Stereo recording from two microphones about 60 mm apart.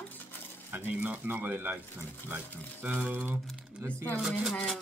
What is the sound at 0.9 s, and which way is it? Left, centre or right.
Speech, right.